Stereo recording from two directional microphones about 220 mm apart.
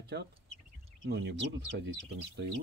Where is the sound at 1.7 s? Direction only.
50° right (ahead or behind).